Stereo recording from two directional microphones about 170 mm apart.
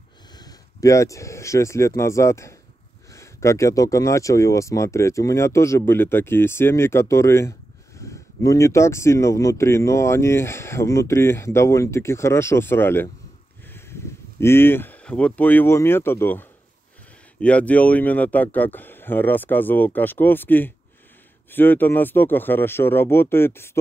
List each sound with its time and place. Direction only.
0.3 s speech: 25° left (ahead or behind)
13.7 s a sound: 15° left (ahead or behind)
14.4 s speech: 15° left (ahead or behind)